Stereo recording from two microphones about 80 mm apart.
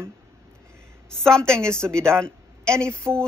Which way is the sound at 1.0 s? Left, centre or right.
Centre.